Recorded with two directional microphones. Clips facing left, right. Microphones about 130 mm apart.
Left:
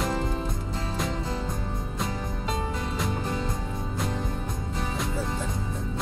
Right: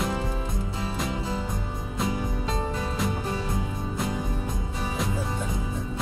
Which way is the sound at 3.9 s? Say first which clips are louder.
Right 1 dB; 5° right (ahead or behind).